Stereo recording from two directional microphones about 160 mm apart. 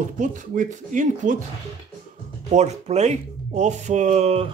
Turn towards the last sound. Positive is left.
turn(degrees=-40)  # may be behind; listen again after turning